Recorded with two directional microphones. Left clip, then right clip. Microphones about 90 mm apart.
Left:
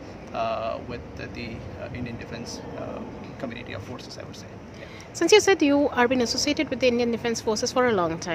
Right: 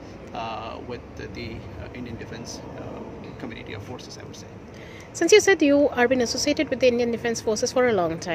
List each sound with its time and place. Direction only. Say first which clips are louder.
0.3 s a sound: left 5 dB; 30° left (ahead or behind)
2.0 s speech: left 1 dB; 30° left (ahead or behind)
5.2 s speech: right 1 dB; centre (ahead or behind)